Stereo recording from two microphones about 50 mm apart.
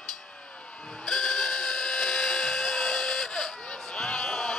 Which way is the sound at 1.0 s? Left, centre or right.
Centre.